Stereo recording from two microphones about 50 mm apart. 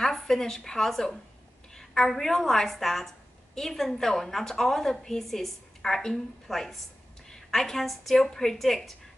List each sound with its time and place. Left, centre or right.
0.0 s a woman's voice: centre